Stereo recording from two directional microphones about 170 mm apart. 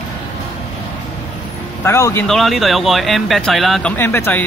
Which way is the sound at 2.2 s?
Centre (ahead or behind).